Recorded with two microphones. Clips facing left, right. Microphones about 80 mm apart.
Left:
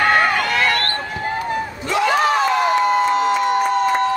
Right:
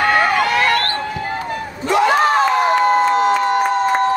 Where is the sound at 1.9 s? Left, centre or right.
Right.